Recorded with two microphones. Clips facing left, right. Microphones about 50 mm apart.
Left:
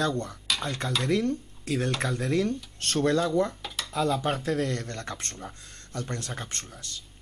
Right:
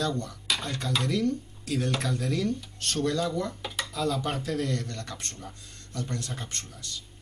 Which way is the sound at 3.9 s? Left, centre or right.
Left.